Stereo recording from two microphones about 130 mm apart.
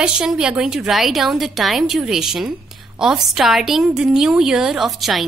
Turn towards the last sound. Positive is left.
turn(degrees=0)  # may be behind; listen again after turning